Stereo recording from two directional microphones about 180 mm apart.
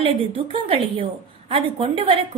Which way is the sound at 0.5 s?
30° right (ahead or behind).